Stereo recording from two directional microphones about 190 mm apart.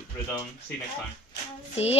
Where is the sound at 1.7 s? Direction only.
35° left (ahead or behind).